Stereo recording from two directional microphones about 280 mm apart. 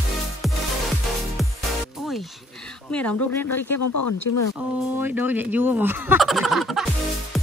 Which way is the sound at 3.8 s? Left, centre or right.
Left.